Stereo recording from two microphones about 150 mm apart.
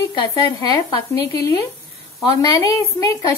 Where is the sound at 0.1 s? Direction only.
25° left (ahead or behind).